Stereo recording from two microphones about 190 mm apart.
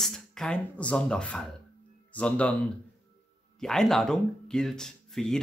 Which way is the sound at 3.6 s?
Centre (ahead or behind).